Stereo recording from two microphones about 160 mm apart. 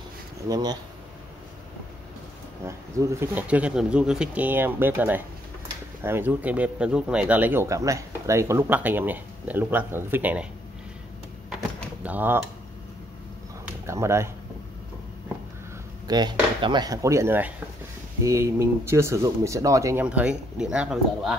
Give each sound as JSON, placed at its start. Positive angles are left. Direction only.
{"t": 0.5, "sound": "speech", "side_deg": -25}
{"t": 2.6, "sound": "speech", "side_deg": -20}
{"t": 12.0, "sound": "speech", "side_deg": -10}
{"t": 13.8, "sound": "speech", "side_deg": -15}
{"t": 16.1, "sound": "speech", "side_deg": -25}